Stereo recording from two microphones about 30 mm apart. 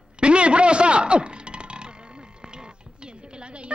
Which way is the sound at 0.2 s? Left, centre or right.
Right.